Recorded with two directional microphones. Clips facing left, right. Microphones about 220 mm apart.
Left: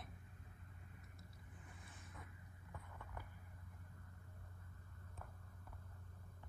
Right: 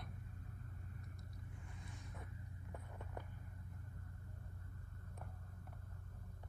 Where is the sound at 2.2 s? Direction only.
30° right (ahead or behind).